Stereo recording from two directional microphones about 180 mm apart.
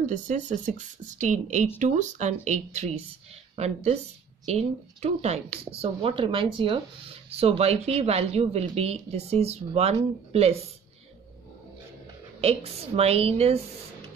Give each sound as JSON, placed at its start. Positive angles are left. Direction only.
{"t": 0.0, "sound": "speech", "side_deg": -45}
{"t": 12.4, "sound": "speech", "side_deg": -35}